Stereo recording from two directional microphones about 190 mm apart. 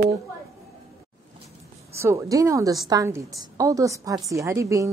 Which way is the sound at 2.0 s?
15° right (ahead or behind).